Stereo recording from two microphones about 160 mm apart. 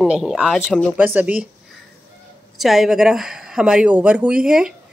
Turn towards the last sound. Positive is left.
turn(degrees=-5)  # may be behind; listen again after turning